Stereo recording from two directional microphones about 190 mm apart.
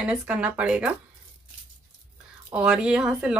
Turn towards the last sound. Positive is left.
turn(degrees=-5)  # may be behind; listen again after turning